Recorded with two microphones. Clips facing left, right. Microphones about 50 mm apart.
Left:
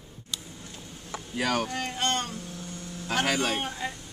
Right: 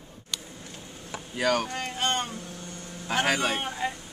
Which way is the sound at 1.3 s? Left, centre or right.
Centre.